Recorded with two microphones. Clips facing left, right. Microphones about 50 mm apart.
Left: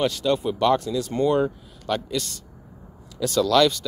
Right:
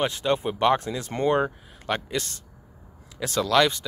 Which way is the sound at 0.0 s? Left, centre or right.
Right.